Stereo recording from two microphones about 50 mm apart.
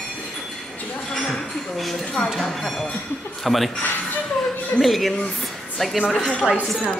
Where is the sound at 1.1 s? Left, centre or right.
Centre.